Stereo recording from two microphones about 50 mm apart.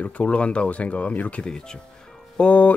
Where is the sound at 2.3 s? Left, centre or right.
Left.